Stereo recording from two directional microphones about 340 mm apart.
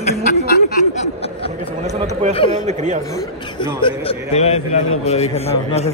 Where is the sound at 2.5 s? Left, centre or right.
Right.